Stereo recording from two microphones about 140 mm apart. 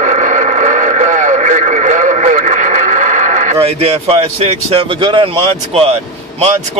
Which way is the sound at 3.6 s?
45° right (ahead or behind).